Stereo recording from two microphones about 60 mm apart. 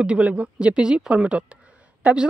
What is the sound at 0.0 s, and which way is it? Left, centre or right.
Speech, right.